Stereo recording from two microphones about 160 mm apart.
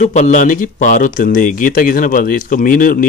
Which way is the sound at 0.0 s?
50° left (ahead or behind).